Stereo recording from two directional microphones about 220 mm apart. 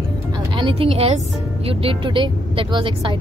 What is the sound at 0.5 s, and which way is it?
A woman's voice, 25° right (ahead or behind).